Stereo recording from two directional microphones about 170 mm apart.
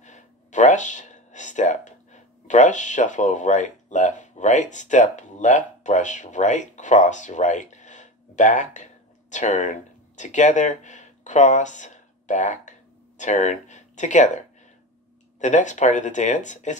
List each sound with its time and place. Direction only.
0.0 s speech: 45° left (ahead or behind)